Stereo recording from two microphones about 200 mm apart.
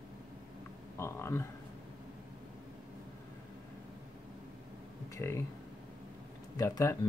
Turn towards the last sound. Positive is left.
turn(degrees=15)  # may be behind; listen again after turning